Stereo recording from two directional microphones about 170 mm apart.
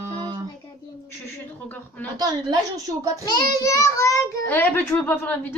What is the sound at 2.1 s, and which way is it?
A woman's voice, 25° right (ahead or behind).